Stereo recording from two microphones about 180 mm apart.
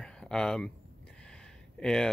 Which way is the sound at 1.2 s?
5° left (ahead or behind).